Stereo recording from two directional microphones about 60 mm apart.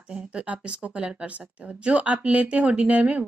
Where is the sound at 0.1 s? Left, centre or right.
Centre.